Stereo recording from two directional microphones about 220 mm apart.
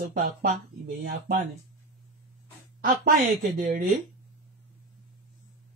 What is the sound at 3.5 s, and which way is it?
Speech, 40° right (ahead or behind).